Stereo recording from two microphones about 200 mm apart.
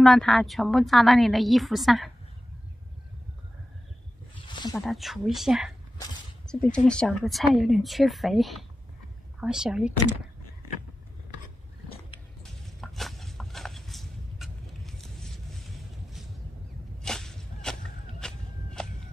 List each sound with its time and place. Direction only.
0.0 s a woman's voice: centre (ahead or behind)
4.4 s zipper: 20° left (ahead or behind)
4.8 s a woman's voice: centre (ahead or behind)
12.8 s a sound: centre (ahead or behind)
17.0 s a sound: 5° left (ahead or behind)
18.2 s walk: 5° left (ahead or behind)